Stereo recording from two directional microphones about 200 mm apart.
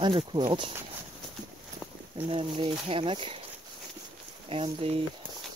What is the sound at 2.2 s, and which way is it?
Speech, 25° right (ahead or behind).